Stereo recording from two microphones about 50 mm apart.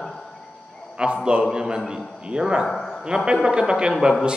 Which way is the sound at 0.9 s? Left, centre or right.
Centre.